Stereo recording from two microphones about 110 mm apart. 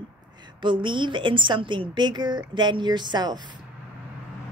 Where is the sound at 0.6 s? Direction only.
45° right (ahead or behind).